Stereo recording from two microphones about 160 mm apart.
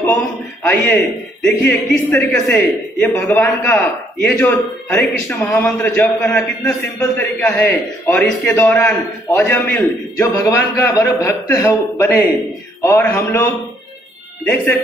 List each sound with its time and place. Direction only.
0.2 s a man's voice: 5° left (ahead or behind)
14.4 s a man's voice: 5° left (ahead or behind)